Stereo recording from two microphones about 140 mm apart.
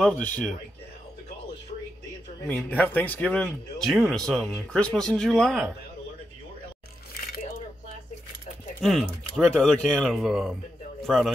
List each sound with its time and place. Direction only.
0.0 s a man's voice: 10° left (ahead or behind)
2.4 s a man's voice: 10° left (ahead or behind)
7.1 s a sound: 90° left
8.8 s speech: centre (ahead or behind)